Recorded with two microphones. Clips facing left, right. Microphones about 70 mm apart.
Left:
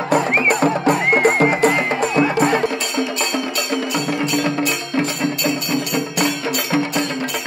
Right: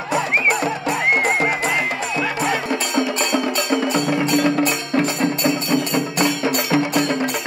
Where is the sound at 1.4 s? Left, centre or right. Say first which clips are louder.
Left 5 dB; left.